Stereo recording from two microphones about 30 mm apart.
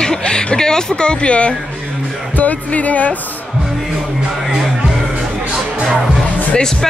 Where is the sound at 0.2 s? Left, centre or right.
Left.